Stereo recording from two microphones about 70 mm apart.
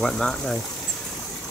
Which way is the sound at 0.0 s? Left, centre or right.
Centre.